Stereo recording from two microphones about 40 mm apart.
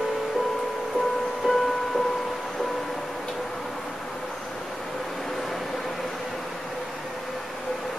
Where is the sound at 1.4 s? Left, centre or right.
Centre.